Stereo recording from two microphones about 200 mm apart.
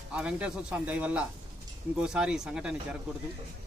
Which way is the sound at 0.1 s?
5° right (ahead or behind).